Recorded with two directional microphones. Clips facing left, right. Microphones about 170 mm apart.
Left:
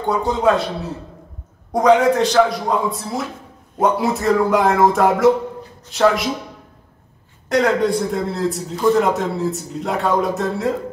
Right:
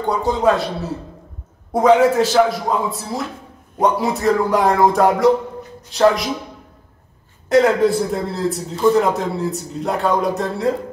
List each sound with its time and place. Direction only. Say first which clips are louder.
0.0 s a man's voice: even; centre (ahead or behind)
1.7 s a man's voice: right 1 dB; 5° right (ahead or behind)
7.4 s a man's voice: right 3 dB; centre (ahead or behind)